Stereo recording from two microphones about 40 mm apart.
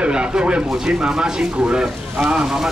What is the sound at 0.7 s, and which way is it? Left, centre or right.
Speech, centre.